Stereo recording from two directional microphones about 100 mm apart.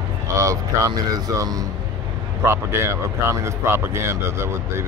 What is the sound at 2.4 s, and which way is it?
Speech, 25° right (ahead or behind).